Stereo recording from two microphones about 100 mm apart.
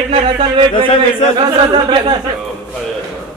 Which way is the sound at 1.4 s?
50° right (ahead or behind).